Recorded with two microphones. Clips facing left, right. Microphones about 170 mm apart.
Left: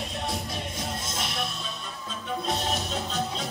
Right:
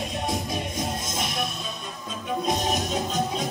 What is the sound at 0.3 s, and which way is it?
Music, 15° right (ahead or behind).